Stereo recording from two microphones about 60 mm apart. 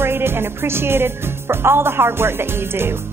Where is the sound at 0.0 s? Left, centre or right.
Right.